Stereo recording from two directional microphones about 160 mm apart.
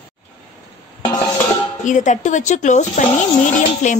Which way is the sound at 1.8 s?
50° left (ahead or behind).